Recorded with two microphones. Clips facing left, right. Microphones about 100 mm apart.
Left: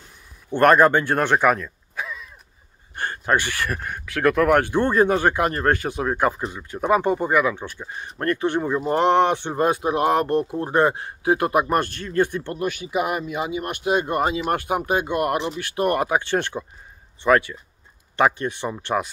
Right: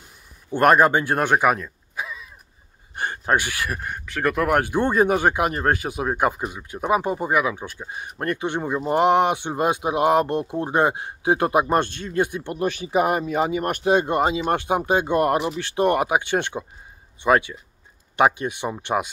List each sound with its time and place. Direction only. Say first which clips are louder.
0.5 s speech: left 1 dB; 10° right (ahead or behind)
12.5 s speech: right 4 dB; 30° right (ahead or behind)
13.9 s speech: even; 25° right (ahead or behind)